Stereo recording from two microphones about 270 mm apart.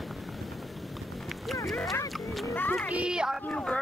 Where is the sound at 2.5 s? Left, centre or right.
Centre.